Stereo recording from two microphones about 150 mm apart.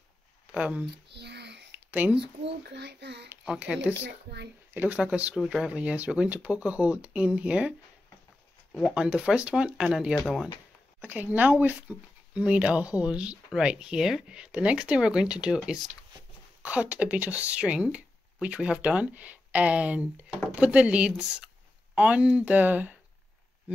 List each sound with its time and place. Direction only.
0.5 s speech: 10° right (ahead or behind)
1.2 s a sound: 90° right
1.9 s a woman's voice: 10° right (ahead or behind)
3.4 s speech: 5° right (ahead or behind)
8.9 s speech: 5° right (ahead or behind)
11.0 s speech: 10° right (ahead or behind)